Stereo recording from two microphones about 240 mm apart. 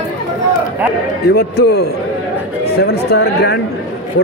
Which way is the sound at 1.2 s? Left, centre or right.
Left.